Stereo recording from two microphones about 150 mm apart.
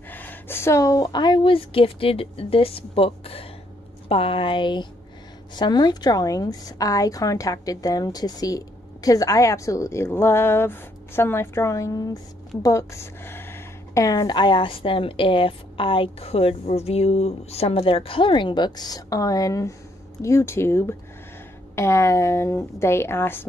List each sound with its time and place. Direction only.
0.1 s a woman's voice: 10° left (ahead or behind)